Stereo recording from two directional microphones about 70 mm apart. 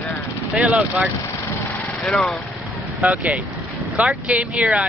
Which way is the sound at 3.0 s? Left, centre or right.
Centre.